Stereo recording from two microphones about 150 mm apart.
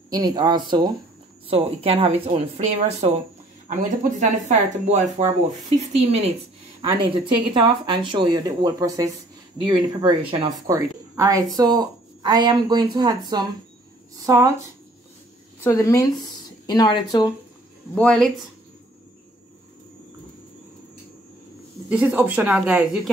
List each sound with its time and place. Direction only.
0.1 s a woman's voice: 25° right (ahead or behind); by 3.2 s 45° right (ahead or behind)
3.6 s speech: 60° right (ahead or behind)
6.8 s speech: 35° right (ahead or behind)
15.6 s speech: 20° left (ahead or behind)
17.9 s speech: 5° left (ahead or behind)
21.8 s speech: 10° right (ahead or behind)